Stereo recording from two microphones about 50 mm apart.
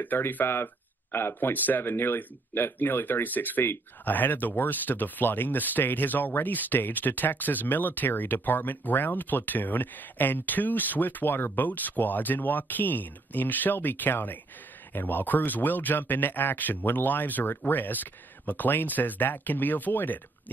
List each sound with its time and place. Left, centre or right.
0.0 s speech: left